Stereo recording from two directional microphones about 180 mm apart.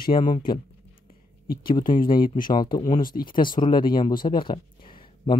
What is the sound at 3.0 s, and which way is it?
Speech, 50° left (ahead or behind).